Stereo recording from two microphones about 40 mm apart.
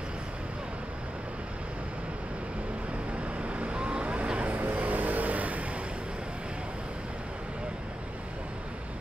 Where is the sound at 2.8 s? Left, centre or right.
Right.